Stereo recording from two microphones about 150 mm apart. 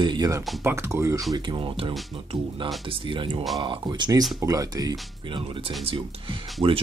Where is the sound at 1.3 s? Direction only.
30° right (ahead or behind).